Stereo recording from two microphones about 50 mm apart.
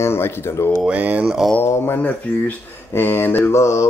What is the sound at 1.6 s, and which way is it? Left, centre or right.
Speech, left.